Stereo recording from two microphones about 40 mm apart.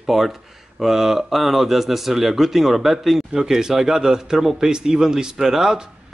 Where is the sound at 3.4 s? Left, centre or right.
Centre.